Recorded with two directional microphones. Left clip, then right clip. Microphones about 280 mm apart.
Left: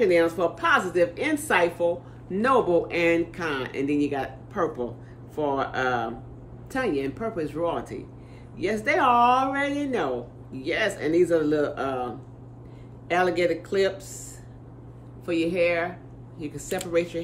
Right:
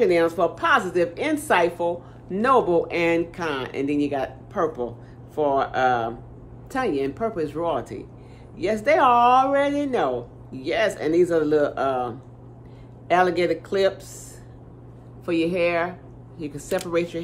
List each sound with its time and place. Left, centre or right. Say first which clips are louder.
0.0 s a woman's voice: right 2 dB; centre
15.2 s a woman's voice: right 1 dB; centre